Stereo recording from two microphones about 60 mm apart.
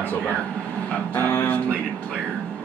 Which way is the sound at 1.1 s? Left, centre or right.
Left.